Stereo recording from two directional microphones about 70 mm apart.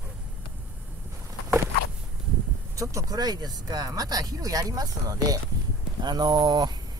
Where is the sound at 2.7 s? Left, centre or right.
Right.